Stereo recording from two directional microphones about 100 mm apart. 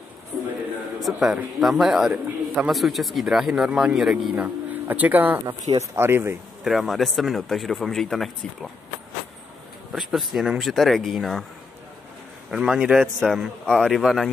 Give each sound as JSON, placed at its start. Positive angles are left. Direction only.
{"t": 0.3, "sound": "a sound", "side_deg": -5}
{"t": 1.0, "sound": "a man's voice", "side_deg": -5}
{"t": 4.8, "sound": "speech", "side_deg": -15}
{"t": 5.5, "sound": "speech", "side_deg": -30}
{"t": 6.6, "sound": "a man's voice", "side_deg": 0}
{"t": 9.9, "sound": "a man's voice", "side_deg": -5}
{"t": 12.4, "sound": "a man's voice", "side_deg": -5}